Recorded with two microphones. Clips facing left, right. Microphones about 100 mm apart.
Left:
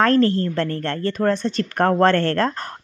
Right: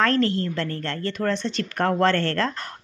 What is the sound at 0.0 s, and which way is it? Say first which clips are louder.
A woman's voice: left 5 dB; 40° left (ahead or behind).